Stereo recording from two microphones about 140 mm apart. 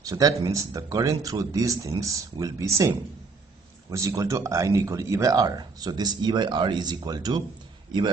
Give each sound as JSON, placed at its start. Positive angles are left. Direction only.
{"t": 0.0, "sound": "speech", "side_deg": -25}